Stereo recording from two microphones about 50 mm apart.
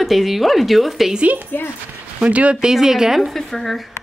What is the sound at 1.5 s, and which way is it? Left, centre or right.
Speech, left.